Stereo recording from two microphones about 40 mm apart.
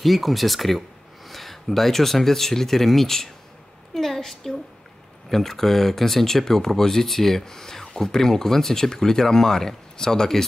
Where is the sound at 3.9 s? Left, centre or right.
Centre.